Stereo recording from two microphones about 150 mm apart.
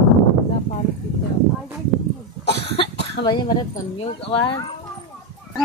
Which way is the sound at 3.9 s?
40° left (ahead or behind).